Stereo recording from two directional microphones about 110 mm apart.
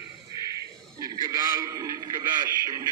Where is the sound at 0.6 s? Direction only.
30° right (ahead or behind).